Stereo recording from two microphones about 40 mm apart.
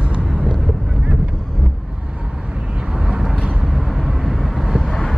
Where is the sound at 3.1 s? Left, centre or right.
Centre.